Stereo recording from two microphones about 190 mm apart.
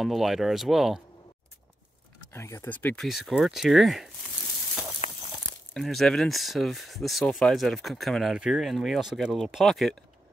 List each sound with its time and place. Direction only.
0.0 s speech: centre (ahead or behind)
2.3 s speech: 15° left (ahead or behind)
3.1 s speech: centre (ahead or behind)
5.0 s a sound: 35° left (ahead or behind)
5.7 s speech: centre (ahead or behind)